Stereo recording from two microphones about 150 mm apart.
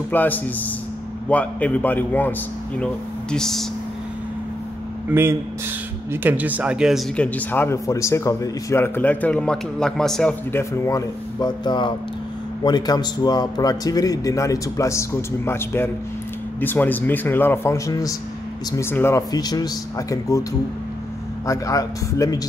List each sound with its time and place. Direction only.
0.1 s speech: 10° left (ahead or behind)
6.2 s speech: 10° right (ahead or behind)
7.2 s speech: 10° left (ahead or behind)
10.5 s a man's voice: 15° left (ahead or behind)
21.5 s a man's voice: 20° left (ahead or behind)